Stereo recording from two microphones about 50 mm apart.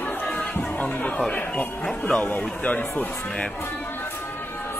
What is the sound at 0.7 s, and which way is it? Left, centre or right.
Music, left.